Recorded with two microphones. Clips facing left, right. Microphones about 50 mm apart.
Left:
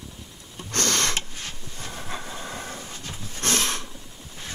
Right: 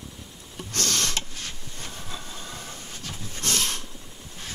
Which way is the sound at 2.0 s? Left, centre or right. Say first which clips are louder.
Left 4 dB; left.